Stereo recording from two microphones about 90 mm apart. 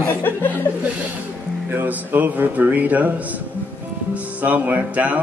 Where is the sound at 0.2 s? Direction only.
20° left (ahead or behind).